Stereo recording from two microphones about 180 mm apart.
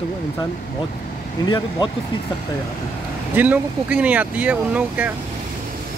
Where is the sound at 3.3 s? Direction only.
10° right (ahead or behind).